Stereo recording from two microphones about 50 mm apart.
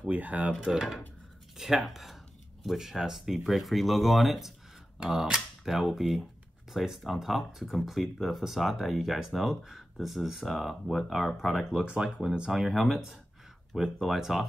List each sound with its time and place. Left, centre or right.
0.1 s speech: right
0.7 s speech: centre
4.9 s speech: centre
11.8 s speech: centre
12.5 s speech: centre